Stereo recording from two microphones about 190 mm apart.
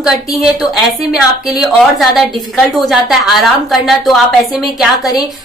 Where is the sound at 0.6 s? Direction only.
Centre (ahead or behind).